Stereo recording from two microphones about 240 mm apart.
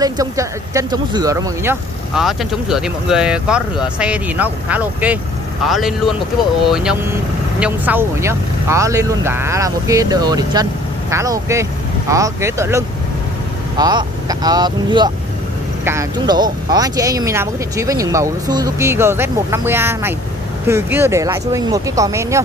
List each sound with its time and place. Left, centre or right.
0.0 s speech: centre